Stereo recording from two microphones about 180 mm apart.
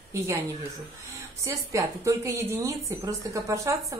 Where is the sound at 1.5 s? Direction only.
15° right (ahead or behind).